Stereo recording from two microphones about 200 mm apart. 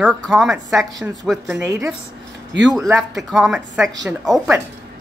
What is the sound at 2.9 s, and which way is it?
Speech, centre (ahead or behind).